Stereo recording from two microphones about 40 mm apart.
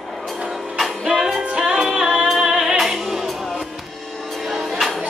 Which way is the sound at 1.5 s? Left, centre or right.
Right.